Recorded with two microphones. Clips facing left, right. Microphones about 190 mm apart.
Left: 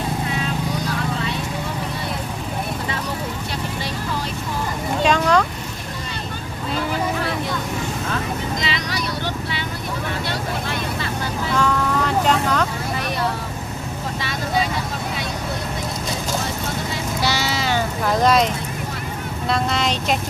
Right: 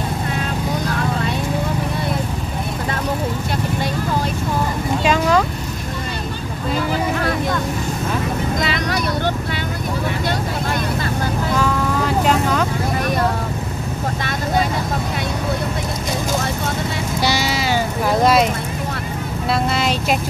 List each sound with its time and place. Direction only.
5.0 s a sound: 5° right (ahead or behind)
8.5 s vehicle: 55° right (ahead or behind)
11.5 s vehicle: 5° right (ahead or behind)
14.2 s vehicle: 50° right (ahead or behind)
17.2 s music: 15° right (ahead or behind)
19.5 s vehicle: 5° right (ahead or behind)